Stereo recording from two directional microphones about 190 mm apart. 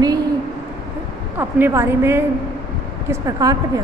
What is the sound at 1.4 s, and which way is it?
Speech, 10° right (ahead or behind).